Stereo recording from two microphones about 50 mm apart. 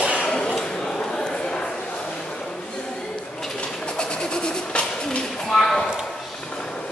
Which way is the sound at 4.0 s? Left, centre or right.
Centre.